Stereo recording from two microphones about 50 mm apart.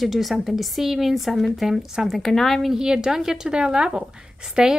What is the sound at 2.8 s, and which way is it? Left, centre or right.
A woman's voice, centre.